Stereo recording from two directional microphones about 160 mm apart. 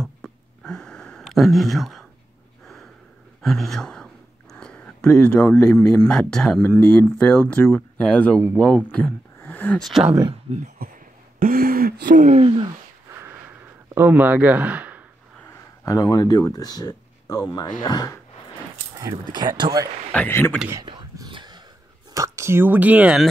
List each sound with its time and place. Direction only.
0.0 s a sound: 5° left (ahead or behind)
2.6 s snort: centre (ahead or behind)
3.4 s speech: centre (ahead or behind)
10.5 s speech: 40° right (ahead or behind)
11.3 s speech: 65° right (ahead or behind)
12.4 s speech: 40° right (ahead or behind)
12.6 s a sound: 15° right (ahead or behind)
15.3 s speech: 15° left (ahead or behind)
18.9 s speech: 25° right (ahead or behind)
20.1 s speech: 10° left (ahead or behind)
20.7 s whispering: 25° right (ahead or behind)
22.1 s speech: 20° right (ahead or behind)